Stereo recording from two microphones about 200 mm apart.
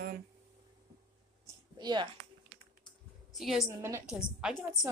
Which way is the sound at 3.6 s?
15° right (ahead or behind).